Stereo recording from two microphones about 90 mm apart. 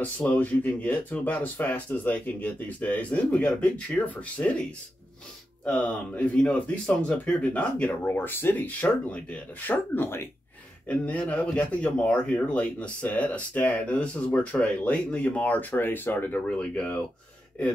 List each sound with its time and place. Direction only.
0.0 s speech: 20° left (ahead or behind)
5.7 s speech: 15° left (ahead or behind)
10.9 s speech: 15° left (ahead or behind)